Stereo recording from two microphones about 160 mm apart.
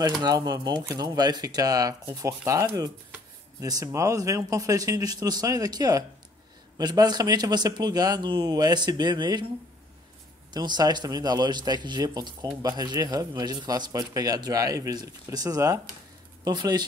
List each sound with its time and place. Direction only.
0.2 s a man's voice: 25° right (ahead or behind)
10.5 s a man's voice: 25° right (ahead or behind)